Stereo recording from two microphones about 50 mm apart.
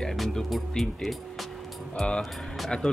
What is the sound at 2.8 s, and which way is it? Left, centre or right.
Speech, centre.